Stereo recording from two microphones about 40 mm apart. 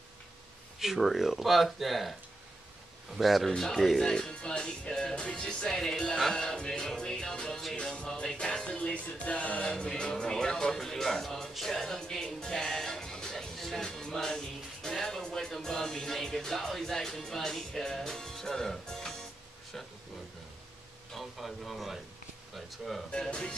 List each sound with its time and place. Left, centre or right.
0.7 s speech: centre
3.2 s speech: centre
4.0 s music: centre
5.8 s music: centre; by 9.7 s left
9.7 s speech: left
13.8 s music: centre
21.1 s speech: centre